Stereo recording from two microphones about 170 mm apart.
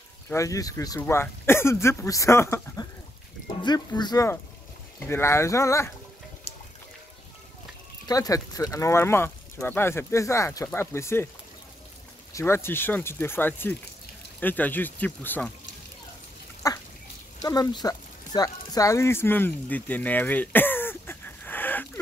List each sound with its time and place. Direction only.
0.3 s speech: 20° left (ahead or behind)
8.1 s speech: 20° left (ahead or behind)
12.3 s speech: 15° left (ahead or behind)
16.6 s duck: 20° left (ahead or behind)
17.4 s speech: 25° left (ahead or behind)